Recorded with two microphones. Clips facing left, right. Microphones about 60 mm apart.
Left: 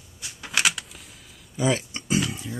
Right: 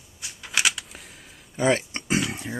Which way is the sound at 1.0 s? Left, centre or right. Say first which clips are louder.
Right 2 dB; centre.